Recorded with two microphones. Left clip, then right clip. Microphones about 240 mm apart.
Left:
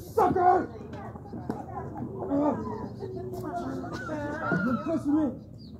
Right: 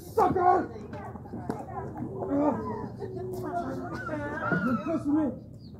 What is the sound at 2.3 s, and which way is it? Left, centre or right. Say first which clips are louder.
Wild animals: even; centre.